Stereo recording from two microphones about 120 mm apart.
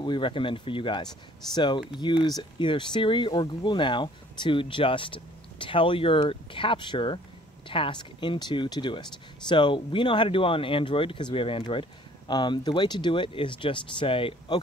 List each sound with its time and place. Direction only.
0.0 s speech: 40° left (ahead or behind)
12.3 s speech: 35° left (ahead or behind)